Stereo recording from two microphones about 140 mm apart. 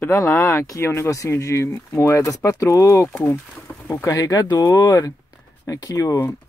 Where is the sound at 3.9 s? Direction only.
25° left (ahead or behind).